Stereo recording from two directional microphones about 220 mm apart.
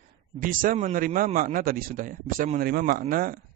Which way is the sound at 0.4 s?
40° right (ahead or behind).